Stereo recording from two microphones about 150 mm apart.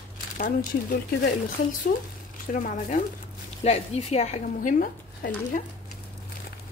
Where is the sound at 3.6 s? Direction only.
45° left (ahead or behind); by 5.6 s 70° left (ahead or behind).